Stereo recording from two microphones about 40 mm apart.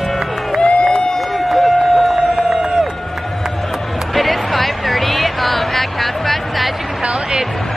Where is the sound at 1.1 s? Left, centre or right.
Centre.